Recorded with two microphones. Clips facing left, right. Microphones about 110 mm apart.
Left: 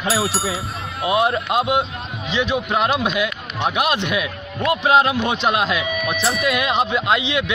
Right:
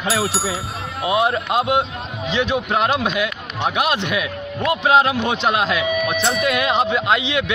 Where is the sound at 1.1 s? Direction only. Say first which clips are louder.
Even; 20° right (ahead or behind).